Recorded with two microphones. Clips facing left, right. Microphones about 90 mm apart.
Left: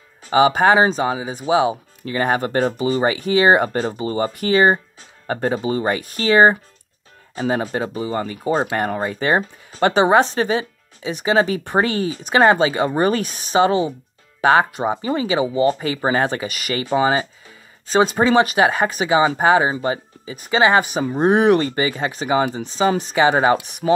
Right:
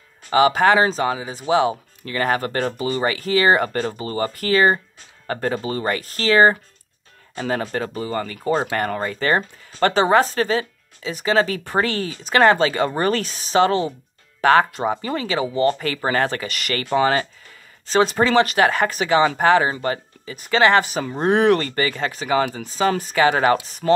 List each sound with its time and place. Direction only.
0.3 s speech: 20° left (ahead or behind)
9.4 s speech: 5° left (ahead or behind)
9.8 s speech: 15° left (ahead or behind)